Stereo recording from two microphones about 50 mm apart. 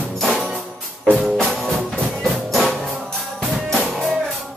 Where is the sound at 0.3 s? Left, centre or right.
Centre.